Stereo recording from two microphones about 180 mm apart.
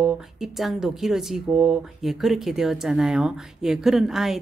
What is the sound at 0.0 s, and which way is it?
Speech, centre (ahead or behind).